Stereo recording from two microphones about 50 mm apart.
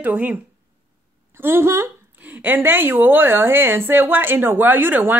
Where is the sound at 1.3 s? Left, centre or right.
Right.